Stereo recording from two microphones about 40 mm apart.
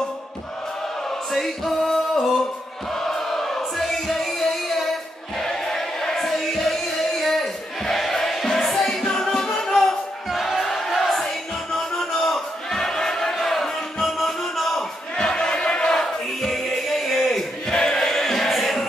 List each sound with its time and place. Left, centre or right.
1.3 s music: centre
5.4 s a sound: centre
9.5 s music: centre
10.3 s crowd: centre
11.9 s a sound: centre
15.2 s chant: left; by 17.5 s centre
17.6 s choir: centre